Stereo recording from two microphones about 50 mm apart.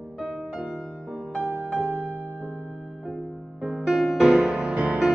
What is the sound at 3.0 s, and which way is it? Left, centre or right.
Music, centre.